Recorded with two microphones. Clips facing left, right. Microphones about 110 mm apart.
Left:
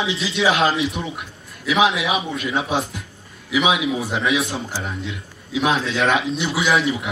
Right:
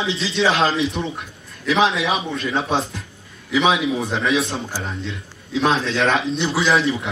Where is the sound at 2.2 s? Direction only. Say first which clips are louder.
Right 1 dB; 10° left (ahead or behind).